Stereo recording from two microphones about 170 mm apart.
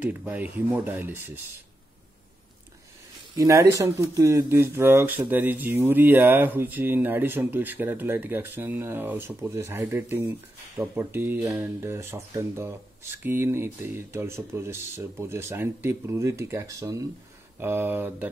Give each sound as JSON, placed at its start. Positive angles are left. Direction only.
{"t": 0.0, "sound": "speech", "side_deg": -10}
{"t": 3.3, "sound": "speech", "side_deg": -15}